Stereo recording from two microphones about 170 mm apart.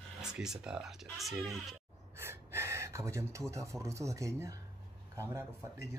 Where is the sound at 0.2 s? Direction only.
5° right (ahead or behind).